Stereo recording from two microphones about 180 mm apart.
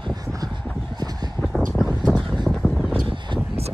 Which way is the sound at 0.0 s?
20° right (ahead or behind).